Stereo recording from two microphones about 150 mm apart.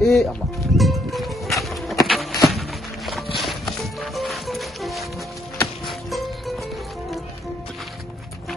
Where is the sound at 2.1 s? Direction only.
Centre (ahead or behind).